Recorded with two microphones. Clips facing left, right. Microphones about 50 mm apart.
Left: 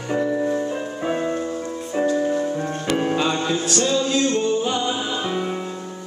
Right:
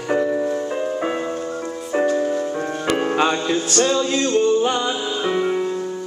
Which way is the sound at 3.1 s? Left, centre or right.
Right.